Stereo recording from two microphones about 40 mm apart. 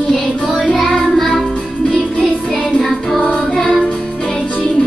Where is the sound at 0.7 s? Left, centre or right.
Centre.